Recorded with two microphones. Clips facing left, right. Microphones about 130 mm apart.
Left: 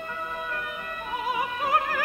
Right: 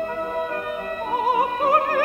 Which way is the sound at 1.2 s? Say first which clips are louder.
Right 8 dB; 45° right (ahead or behind).